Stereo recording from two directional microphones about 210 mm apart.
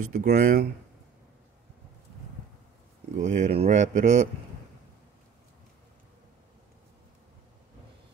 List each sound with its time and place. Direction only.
0.0 s speech: 40° right (ahead or behind)
3.2 s speech: 35° right (ahead or behind)